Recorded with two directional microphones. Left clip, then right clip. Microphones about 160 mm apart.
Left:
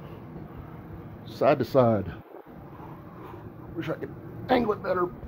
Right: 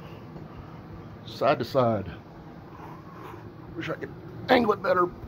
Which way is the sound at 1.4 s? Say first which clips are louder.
Left 2 dB; 85° left.